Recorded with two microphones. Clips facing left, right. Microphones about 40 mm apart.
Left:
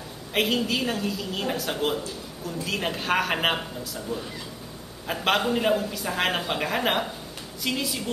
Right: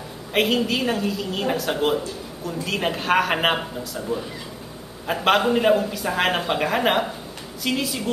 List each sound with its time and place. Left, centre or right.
0.3 s a woman's voice: centre